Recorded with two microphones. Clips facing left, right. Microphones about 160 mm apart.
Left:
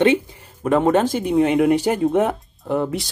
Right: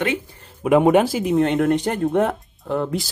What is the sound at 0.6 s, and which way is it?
Speech, 10° right (ahead or behind).